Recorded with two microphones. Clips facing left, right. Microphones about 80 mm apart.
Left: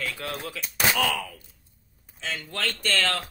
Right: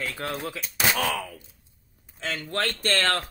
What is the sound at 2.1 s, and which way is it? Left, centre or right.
Speech, right.